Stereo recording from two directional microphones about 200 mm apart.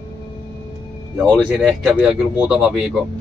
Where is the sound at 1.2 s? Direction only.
Centre (ahead or behind).